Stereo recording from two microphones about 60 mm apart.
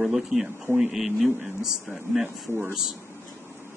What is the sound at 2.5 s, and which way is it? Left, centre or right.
Speech, left.